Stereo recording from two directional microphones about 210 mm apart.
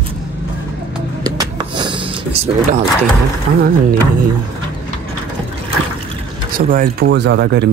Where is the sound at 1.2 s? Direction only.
20° right (ahead or behind).